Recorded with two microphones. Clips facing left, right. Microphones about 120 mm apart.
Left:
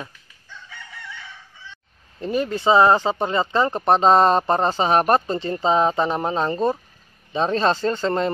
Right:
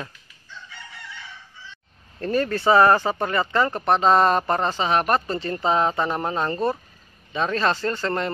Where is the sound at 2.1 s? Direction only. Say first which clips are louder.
Even; 15° left (ahead or behind).